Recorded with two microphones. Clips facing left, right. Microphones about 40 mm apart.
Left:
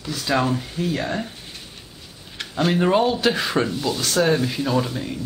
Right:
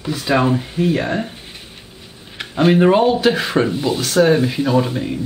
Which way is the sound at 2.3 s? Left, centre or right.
Centre.